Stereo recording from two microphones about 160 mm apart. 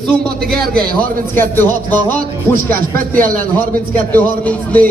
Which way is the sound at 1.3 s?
15° left (ahead or behind).